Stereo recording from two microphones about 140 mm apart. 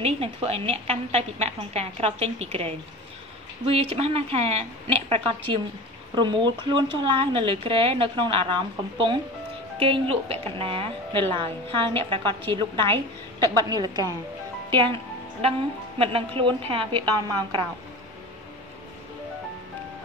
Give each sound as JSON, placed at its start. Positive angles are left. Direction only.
{"t": 0.0, "sound": "a woman's voice", "side_deg": -45}
{"t": 16.0, "sound": "a woman's voice", "side_deg": -40}